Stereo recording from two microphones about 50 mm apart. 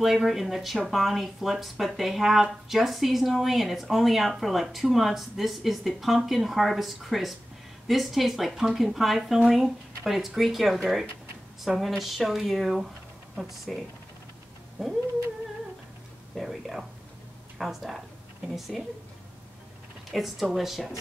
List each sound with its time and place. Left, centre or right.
0.0 s speech: centre
16.3 s speech: centre
20.1 s speech: centre